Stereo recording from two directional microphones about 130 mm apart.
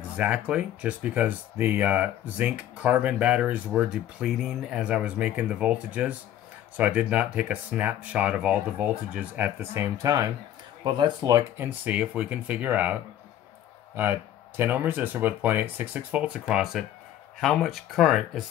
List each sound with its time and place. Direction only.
0.2 s speech: 10° right (ahead or behind); by 10.3 s 25° right (ahead or behind)
10.8 s speech: 35° right (ahead or behind)
11.5 s speech: 15° right (ahead or behind)
14.6 s speech: 15° right (ahead or behind)